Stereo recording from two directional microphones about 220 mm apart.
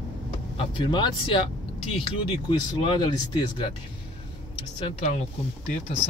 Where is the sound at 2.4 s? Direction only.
20° left (ahead or behind).